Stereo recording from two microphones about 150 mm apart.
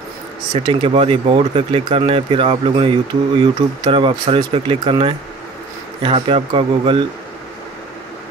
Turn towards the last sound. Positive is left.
turn(degrees=-35)  # may be behind; listen again after turning